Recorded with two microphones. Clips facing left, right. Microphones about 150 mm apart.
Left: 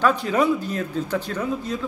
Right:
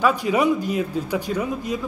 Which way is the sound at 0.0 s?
10° right (ahead or behind).